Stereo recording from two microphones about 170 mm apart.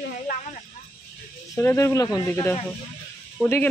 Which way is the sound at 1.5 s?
15° left (ahead or behind).